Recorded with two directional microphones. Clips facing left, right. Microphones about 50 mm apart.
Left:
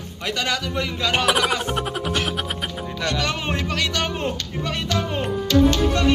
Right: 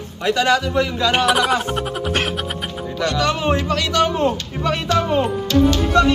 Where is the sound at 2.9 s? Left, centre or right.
Right.